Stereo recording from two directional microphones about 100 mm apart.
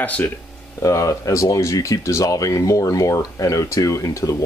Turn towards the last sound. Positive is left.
turn(degrees=35)  # may be behind; listen again after turning